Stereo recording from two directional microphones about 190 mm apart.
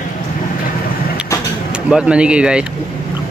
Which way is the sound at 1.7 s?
5° right (ahead or behind).